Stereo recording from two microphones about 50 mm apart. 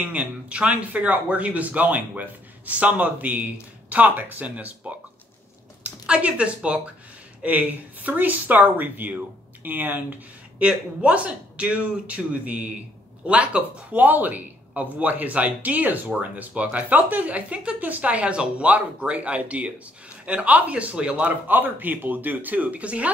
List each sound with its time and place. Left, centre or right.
0.0 s speech: right
6.0 s speech: right
10.6 s speech: right
21.5 s speech: right